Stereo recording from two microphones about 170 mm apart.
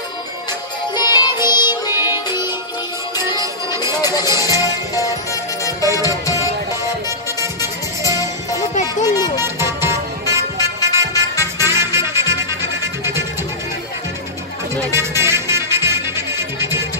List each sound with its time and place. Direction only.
0.9 s music: 25° left (ahead or behind)
3.3 s music: 15° right (ahead or behind)
4.0 s music: 20° left (ahead or behind)
9.0 s a sound: 20° left (ahead or behind)
9.4 s music: 15° right (ahead or behind)
14.8 s music: 15° right (ahead or behind)